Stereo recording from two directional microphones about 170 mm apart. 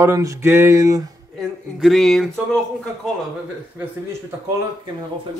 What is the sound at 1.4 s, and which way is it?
Speech, centre (ahead or behind).